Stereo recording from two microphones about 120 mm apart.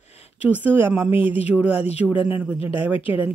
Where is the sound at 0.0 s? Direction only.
60° left (ahead or behind).